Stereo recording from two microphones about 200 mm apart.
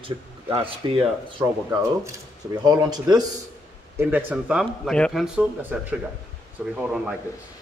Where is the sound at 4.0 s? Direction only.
10° right (ahead or behind).